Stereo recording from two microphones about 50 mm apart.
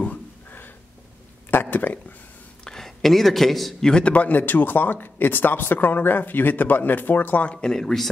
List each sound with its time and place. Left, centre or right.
0.0 s a sound: left
2.6 s a woman's voice: centre
3.8 s speech: centre
4.1 s speech: left
7.4 s speech: centre
7.8 s speech: centre